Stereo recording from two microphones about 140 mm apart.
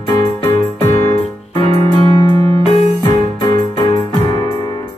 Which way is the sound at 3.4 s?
30° left (ahead or behind).